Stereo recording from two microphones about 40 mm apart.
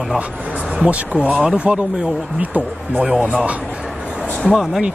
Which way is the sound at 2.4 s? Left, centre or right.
Right.